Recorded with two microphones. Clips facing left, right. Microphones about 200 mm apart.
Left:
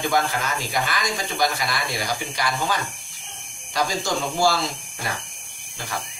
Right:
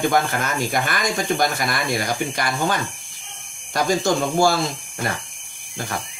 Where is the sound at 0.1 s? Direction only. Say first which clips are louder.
Right 2 dB; 50° right (ahead or behind).